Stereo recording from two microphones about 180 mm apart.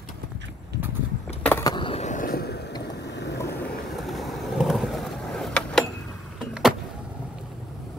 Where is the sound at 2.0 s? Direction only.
45° left (ahead or behind).